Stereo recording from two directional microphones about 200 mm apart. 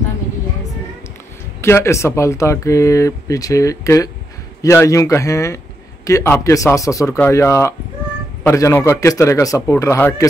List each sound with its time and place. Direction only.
1.6 s speech: 15° left (ahead or behind)